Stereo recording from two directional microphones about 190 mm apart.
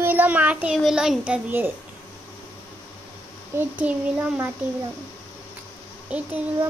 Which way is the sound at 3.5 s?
5° right (ahead or behind).